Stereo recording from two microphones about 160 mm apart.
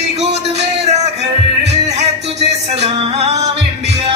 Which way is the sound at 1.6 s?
40° right (ahead or behind).